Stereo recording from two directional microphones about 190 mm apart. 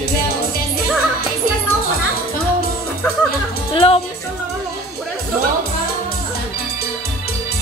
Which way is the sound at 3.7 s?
30° left (ahead or behind).